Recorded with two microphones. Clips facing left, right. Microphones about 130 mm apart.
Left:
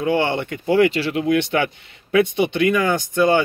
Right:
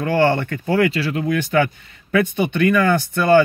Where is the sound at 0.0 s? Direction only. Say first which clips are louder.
Right 2 dB; 20° left (ahead or behind).